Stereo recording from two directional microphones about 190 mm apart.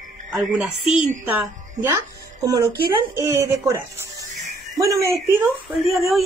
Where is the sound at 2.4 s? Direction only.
20° right (ahead or behind).